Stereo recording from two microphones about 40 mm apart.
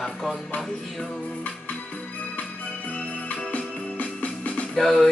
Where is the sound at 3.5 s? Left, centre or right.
Left.